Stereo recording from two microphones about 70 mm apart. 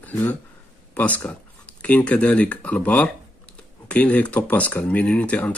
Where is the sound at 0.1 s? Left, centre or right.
Left.